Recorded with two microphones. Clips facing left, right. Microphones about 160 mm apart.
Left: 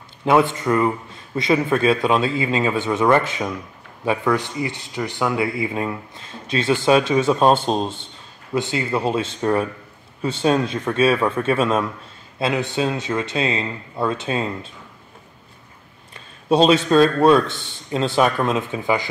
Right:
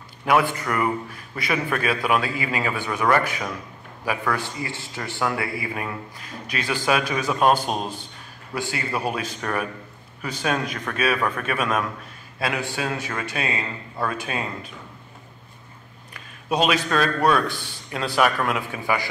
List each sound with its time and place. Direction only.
0.2 s speech: 25° left (ahead or behind)
16.1 s speech: 30° left (ahead or behind)